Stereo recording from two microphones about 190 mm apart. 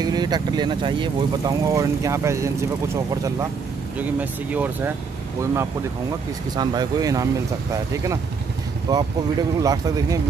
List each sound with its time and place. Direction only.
0.0 s speech: 20° right (ahead or behind)
4.0 s speech: 10° right (ahead or behind)